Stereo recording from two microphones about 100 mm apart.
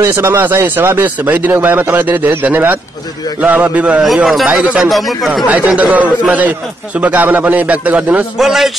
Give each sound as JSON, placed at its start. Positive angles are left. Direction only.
{"t": 0.0, "sound": "a man's voice", "side_deg": -25}
{"t": 4.0, "sound": "speech", "side_deg": 0}
{"t": 5.8, "sound": "a man's voice", "side_deg": -15}
{"t": 8.4, "sound": "speech", "side_deg": 0}